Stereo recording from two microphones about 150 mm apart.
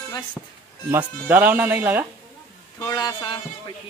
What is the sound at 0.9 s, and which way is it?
Speech, 10° right (ahead or behind).